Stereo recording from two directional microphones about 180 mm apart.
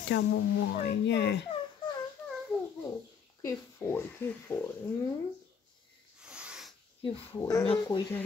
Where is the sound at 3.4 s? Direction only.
15° left (ahead or behind).